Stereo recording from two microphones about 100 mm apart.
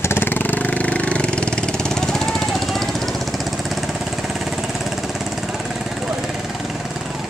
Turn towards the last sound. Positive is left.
turn(degrees=-5)  # may be behind; listen again after turning